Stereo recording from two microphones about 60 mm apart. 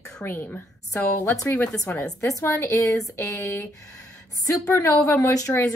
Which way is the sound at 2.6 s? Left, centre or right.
Left.